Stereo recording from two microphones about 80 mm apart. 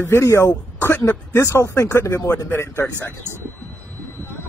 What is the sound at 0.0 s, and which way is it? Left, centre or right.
Speech, left.